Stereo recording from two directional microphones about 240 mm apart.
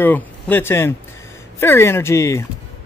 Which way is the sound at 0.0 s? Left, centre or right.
Centre.